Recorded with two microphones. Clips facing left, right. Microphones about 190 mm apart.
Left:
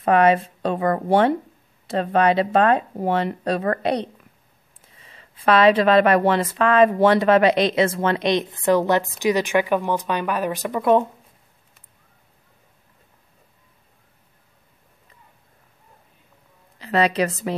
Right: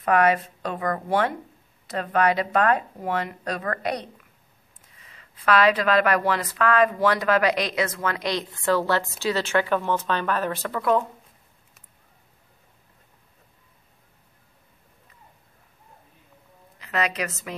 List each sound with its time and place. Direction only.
0.0 s speech: 25° left (ahead or behind)
16.7 s a woman's voice: 30° left (ahead or behind)